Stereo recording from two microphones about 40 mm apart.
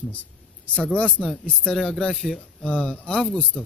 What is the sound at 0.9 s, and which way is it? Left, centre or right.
Speech, left.